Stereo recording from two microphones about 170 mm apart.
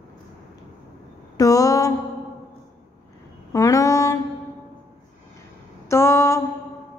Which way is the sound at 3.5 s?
20° left (ahead or behind).